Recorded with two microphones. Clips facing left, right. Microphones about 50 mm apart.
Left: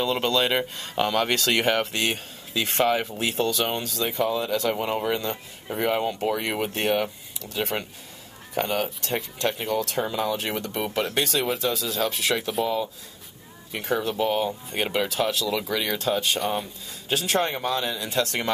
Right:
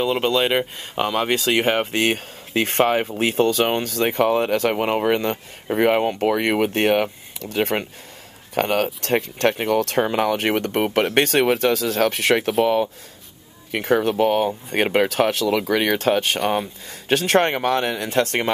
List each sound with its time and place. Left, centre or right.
0.0 s speech: centre
2.0 s speech: right
13.7 s speech: right
16.3 s speech: right
17.1 s speech: right